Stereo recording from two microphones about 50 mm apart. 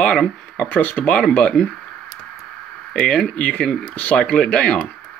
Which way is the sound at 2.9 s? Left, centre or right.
Centre.